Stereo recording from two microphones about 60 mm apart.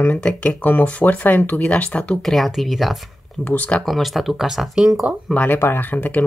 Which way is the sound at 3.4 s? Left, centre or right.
Left.